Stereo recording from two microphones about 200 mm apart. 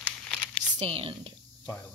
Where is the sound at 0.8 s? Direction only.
25° right (ahead or behind).